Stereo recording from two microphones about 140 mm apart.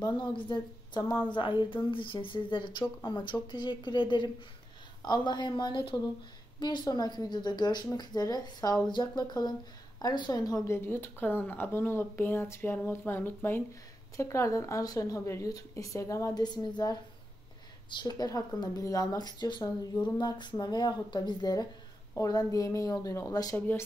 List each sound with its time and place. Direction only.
0.0 s speech: 35° left (ahead or behind)